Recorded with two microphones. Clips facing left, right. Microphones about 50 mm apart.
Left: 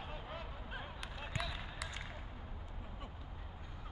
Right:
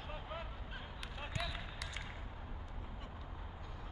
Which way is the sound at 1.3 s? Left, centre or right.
Centre.